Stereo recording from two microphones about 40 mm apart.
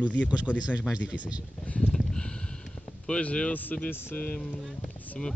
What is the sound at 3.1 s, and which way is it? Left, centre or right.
Speech, left.